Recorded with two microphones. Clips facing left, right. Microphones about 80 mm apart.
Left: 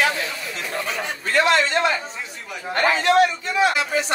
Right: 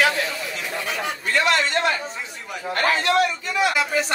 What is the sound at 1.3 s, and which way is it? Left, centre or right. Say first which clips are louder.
Speech: left 2 dB; left.